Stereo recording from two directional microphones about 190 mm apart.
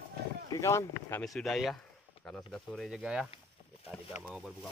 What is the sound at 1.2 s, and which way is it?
Speech, centre (ahead or behind).